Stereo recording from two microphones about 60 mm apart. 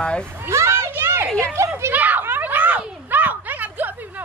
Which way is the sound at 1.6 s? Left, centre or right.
Right.